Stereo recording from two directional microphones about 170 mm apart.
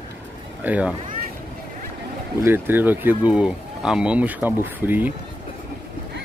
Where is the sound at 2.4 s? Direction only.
15° right (ahead or behind).